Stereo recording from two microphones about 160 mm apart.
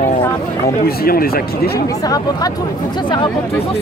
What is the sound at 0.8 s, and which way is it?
Speech, 70° left (ahead or behind).